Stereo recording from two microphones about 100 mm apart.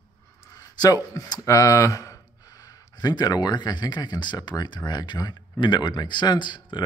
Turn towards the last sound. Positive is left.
turn(degrees=50)  # may be behind; listen again after turning